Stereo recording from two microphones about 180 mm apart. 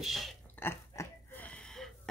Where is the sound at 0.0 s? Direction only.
Centre (ahead or behind).